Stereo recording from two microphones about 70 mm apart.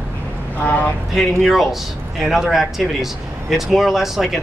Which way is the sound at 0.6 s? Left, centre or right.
Left.